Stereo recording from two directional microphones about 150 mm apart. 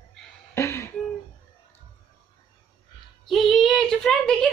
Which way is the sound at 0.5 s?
20° left (ahead or behind).